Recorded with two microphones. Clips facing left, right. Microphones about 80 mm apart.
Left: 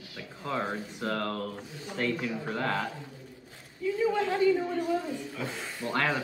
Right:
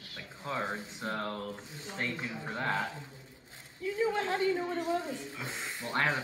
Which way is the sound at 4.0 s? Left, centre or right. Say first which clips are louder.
Left 4 dB; right.